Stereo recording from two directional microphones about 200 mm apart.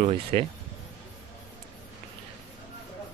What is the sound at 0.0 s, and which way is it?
Speech, 30° right (ahead or behind).